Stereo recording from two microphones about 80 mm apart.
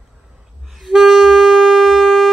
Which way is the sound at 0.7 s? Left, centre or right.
Centre.